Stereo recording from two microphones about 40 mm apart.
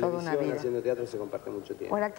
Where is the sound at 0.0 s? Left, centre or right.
Centre.